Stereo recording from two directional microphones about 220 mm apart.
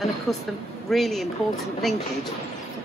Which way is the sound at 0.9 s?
Centre (ahead or behind).